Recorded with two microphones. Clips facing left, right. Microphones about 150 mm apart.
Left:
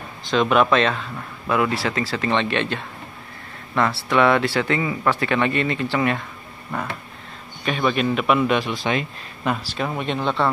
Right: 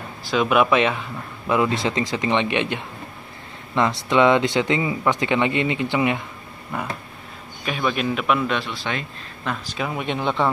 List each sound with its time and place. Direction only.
0.3 s a man's voice: 10° right (ahead or behind)
8.5 s speech: 15° left (ahead or behind)
9.8 s a man's voice: centre (ahead or behind)
10.0 s speech: 15° right (ahead or behind)